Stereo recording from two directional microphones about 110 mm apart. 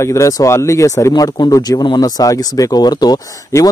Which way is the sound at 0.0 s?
30° left (ahead or behind).